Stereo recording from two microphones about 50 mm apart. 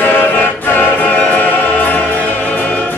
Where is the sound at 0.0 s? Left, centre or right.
Left.